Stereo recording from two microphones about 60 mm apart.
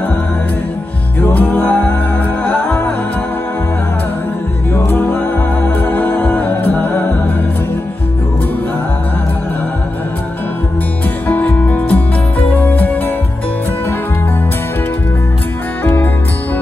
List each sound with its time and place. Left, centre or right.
1.2 s music: left
4.7 s music: left
11.2 s music: left
15.8 s music: left